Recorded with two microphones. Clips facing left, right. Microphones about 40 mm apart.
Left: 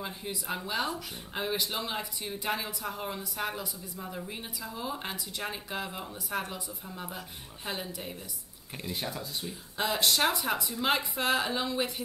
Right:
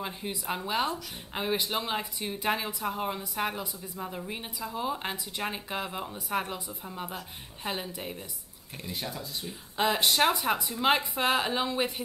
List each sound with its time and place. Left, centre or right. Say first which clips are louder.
0.0 s speech: right 2 dB; centre
8.7 s speech: left 1 dB; centre
9.5 s speech: right 5 dB; centre